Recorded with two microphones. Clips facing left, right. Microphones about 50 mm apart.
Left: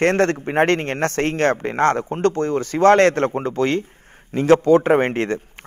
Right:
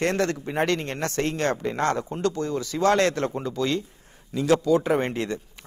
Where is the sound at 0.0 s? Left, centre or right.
Left.